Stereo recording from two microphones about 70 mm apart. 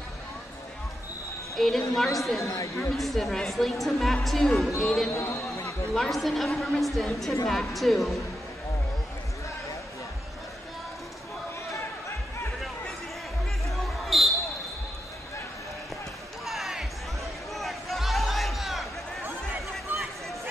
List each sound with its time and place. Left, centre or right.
1.6 s speech: centre
2.4 s speech: left
2.9 s speech: centre
5.1 s chatter: left
5.9 s speech: centre
13.7 s basketball bounce: centre
16.4 s music: centre